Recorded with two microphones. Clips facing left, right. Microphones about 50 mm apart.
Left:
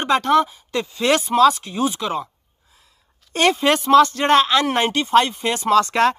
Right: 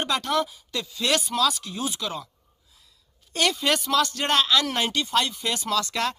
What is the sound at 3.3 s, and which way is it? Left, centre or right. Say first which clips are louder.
Speech: left 7 dB; left.